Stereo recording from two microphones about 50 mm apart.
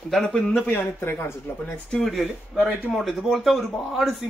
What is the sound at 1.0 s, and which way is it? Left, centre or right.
Speech, left.